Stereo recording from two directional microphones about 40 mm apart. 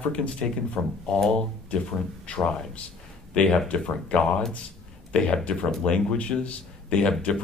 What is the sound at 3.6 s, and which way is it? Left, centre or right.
Speech, left.